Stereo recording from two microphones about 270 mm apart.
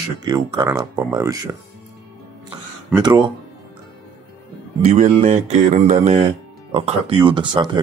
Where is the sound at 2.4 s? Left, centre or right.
Centre.